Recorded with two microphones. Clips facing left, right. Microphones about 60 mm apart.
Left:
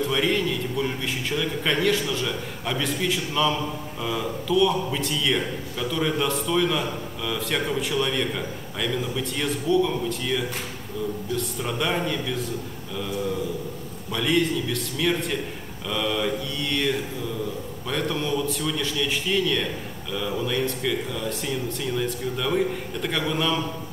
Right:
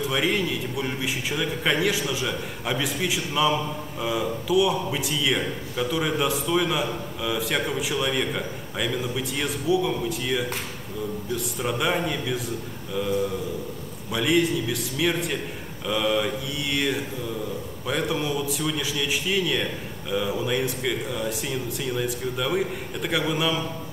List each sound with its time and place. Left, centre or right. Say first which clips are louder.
0.0 s a man's voice: left 1 dB; centre
14.1 s a man's voice: right 1 dB; centre